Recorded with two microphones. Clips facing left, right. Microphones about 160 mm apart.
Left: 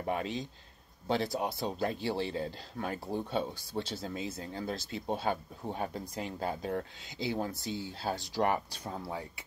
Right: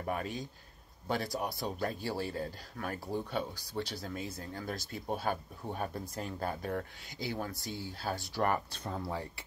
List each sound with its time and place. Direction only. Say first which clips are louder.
0.0 s speech: left 2 dB; 25° left (ahead or behind)
8.9 s speech: right 1 dB; centre (ahead or behind)